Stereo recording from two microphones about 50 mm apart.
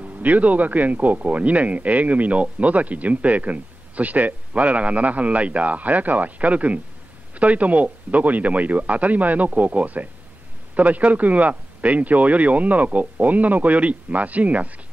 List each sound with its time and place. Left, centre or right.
0.0 s speech: right